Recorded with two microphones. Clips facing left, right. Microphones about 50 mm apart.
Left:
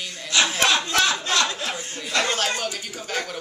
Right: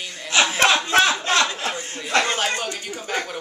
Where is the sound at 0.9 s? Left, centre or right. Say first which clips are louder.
Right 4 dB; right.